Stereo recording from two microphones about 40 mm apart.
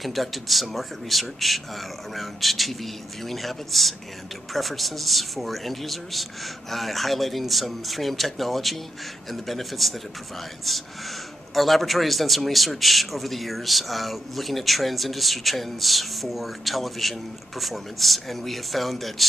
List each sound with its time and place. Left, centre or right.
0.0 s speech: centre